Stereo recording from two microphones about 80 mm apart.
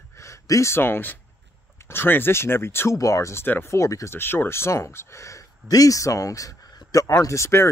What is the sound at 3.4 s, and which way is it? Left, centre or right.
Speech, left.